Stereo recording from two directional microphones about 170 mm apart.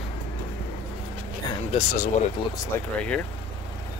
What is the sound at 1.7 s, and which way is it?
Speech, 40° left (ahead or behind).